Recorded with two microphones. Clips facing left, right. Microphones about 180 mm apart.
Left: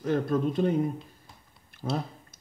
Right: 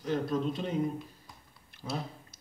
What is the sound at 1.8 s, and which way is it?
Speech, 50° left (ahead or behind).